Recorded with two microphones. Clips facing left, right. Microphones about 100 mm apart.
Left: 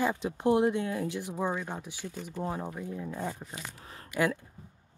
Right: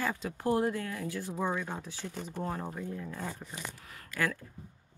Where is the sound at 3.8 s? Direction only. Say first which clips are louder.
Left 3 dB; 30° left (ahead or behind).